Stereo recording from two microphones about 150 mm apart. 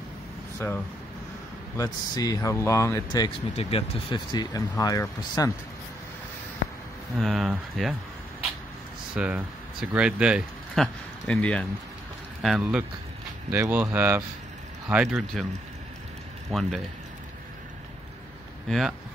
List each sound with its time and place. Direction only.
1.8 s speech: 25° left (ahead or behind)
3.5 s speech: 35° left (ahead or behind)
7.2 s speech: centre (ahead or behind)
9.1 s speech: 5° right (ahead or behind)
13.5 s speech: 15° right (ahead or behind)
16.4 s speech: centre (ahead or behind)
18.7 s speech: centre (ahead or behind)